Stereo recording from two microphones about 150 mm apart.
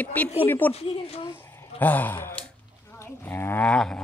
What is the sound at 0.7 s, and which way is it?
Speech, 40° left (ahead or behind).